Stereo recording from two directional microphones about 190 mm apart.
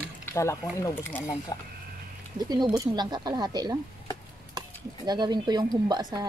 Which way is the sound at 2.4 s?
20° right (ahead or behind).